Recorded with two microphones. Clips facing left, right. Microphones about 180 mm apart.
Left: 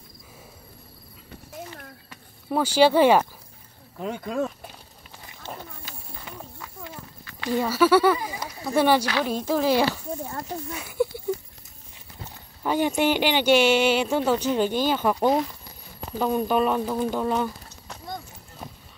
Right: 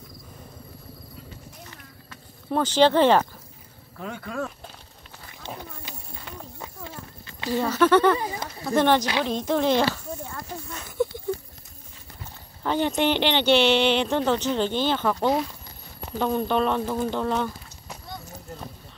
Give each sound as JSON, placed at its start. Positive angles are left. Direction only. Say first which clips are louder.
{"t": 2.0, "sound": "speech", "louder": "right 1 dB", "side_deg": 10}
{"t": 4.0, "sound": "speech", "louder": "left 4 dB", "side_deg": 20}
{"t": 6.6, "sound": "clip-clop", "louder": "right 1 dB", "side_deg": -25}
{"t": 7.5, "sound": "speech", "louder": "even", "side_deg": 10}
{"t": 12.6, "sound": "speech", "louder": "left 1 dB", "side_deg": 10}